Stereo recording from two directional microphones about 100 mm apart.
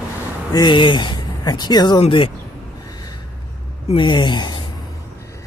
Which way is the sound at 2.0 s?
60° left (ahead or behind).